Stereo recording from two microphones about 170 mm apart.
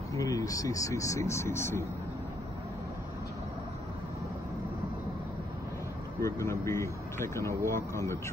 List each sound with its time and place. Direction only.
0.1 s speech: 20° left (ahead or behind)
6.1 s speech: 15° left (ahead or behind)